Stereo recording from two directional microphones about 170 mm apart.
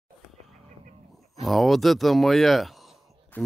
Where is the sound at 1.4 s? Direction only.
Centre (ahead or behind).